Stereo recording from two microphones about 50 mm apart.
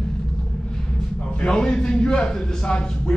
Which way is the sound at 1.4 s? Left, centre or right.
Centre.